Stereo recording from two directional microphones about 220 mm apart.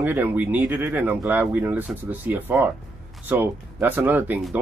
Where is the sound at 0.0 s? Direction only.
10° right (ahead or behind).